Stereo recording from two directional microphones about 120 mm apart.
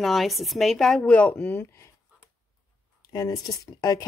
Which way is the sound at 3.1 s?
35° left (ahead or behind).